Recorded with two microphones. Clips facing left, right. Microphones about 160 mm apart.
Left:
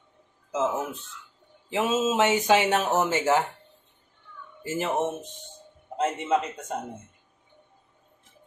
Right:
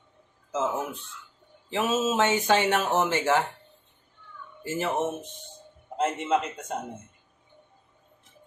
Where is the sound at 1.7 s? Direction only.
20° left (ahead or behind).